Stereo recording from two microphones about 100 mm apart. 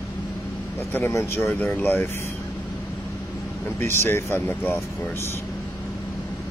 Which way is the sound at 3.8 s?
25° left (ahead or behind).